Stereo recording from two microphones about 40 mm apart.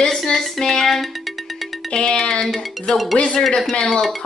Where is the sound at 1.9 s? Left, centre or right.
Left.